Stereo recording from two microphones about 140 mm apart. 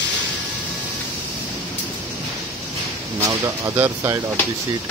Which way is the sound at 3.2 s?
20° right (ahead or behind).